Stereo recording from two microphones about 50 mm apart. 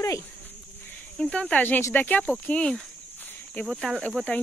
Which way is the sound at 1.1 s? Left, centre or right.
Centre.